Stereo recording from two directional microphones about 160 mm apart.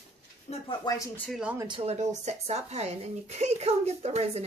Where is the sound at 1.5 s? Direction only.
30° right (ahead or behind).